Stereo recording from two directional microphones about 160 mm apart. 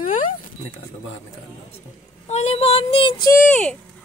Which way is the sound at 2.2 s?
45° left (ahead or behind).